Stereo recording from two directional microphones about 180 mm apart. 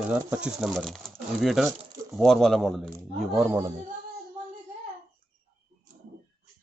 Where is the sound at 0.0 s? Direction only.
5° right (ahead or behind).